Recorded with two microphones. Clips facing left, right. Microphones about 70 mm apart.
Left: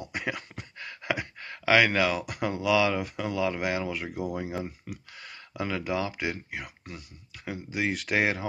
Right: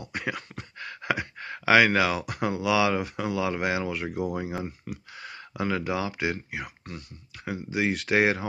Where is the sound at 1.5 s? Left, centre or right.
Centre.